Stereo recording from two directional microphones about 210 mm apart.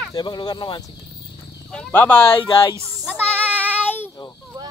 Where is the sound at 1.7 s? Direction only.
5° left (ahead or behind).